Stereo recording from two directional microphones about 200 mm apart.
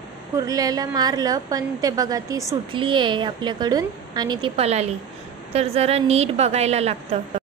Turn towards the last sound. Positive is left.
turn(degrees=-30)  # may be behind; listen again after turning